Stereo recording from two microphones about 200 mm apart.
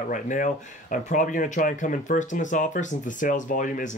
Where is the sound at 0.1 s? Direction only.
40° left (ahead or behind).